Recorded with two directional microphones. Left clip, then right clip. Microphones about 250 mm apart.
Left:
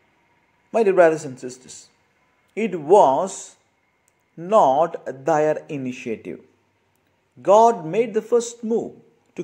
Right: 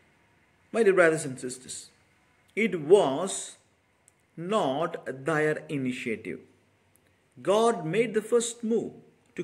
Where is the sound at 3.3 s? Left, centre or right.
Left.